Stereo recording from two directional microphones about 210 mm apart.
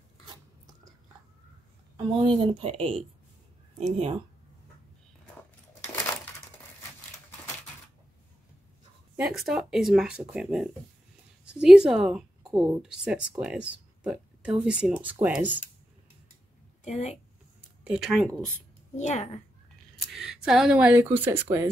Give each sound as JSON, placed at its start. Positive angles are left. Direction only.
{"t": 2.1, "sound": "speech", "side_deg": -25}
{"t": 9.1, "sound": "a woman's voice", "side_deg": -5}
{"t": 16.8, "sound": "a child's voice", "side_deg": 30}
{"t": 17.8, "sound": "speech", "side_deg": -5}
{"t": 18.9, "sound": "a child's voice", "side_deg": 35}
{"t": 20.0, "sound": "speech", "side_deg": 0}